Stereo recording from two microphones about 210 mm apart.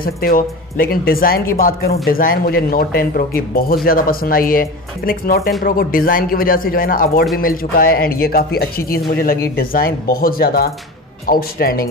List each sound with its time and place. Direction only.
0.0 s speech: 45° left (ahead or behind)